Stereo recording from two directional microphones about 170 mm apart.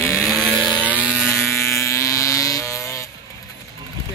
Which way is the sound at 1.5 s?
15° left (ahead or behind).